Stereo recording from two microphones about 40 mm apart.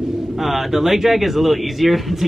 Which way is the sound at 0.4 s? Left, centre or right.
Centre.